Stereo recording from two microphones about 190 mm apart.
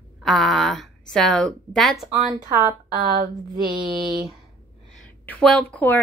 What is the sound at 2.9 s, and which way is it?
Speech, 50° right (ahead or behind).